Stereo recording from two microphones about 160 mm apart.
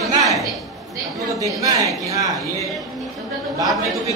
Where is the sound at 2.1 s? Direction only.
20° right (ahead or behind).